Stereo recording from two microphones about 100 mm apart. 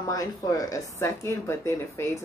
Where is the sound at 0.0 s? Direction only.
35° left (ahead or behind).